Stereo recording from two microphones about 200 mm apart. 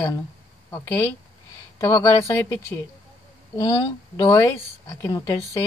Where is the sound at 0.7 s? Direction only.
15° left (ahead or behind).